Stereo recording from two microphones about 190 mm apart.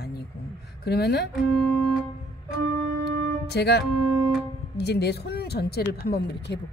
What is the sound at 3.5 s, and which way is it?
Speech, 60° left (ahead or behind).